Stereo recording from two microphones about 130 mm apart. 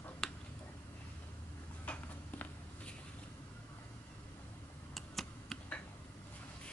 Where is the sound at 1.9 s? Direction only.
10° left (ahead or behind).